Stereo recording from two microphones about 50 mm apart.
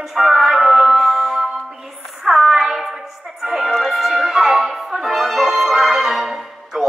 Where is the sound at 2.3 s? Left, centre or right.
Centre.